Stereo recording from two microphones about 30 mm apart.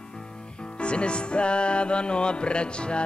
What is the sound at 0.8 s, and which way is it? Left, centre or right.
Music, left.